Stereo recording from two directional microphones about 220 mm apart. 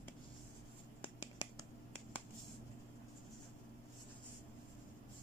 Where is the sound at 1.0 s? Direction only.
15° left (ahead or behind).